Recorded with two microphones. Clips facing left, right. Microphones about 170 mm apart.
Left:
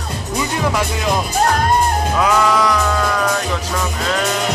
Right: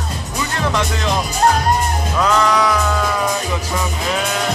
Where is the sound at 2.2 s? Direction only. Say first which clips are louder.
Even; 5° left (ahead or behind).